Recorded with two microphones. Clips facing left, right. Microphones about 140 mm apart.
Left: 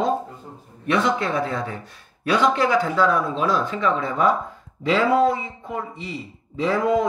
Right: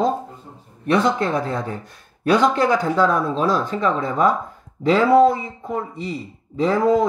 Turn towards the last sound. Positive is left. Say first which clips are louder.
# right 3 dB
turn(degrees=-35)  # may be behind; listen again after turning